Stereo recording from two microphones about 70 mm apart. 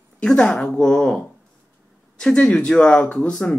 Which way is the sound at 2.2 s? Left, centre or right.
Centre.